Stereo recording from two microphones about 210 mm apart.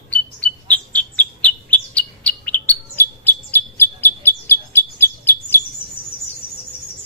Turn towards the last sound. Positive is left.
turn(degrees=50)  # may be behind; listen again after turning